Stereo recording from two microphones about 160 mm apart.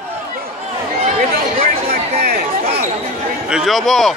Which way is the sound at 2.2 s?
80° right.